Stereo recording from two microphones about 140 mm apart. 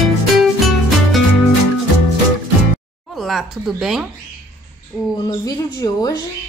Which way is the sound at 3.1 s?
Centre (ahead or behind).